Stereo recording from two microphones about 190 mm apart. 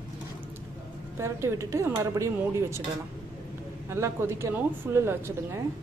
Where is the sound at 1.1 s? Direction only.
15° right (ahead or behind).